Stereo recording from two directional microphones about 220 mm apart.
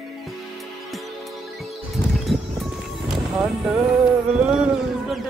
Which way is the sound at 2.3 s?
Centre (ahead or behind).